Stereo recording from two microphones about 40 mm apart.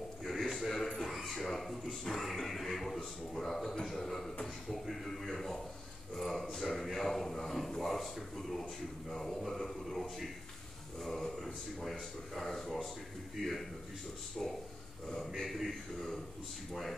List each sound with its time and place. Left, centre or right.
0.2 s a sound: centre
15.0 s a man's voice: centre
15.4 s a man's voice: centre